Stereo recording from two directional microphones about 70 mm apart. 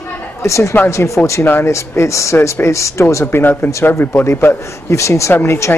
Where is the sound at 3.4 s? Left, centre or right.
Left.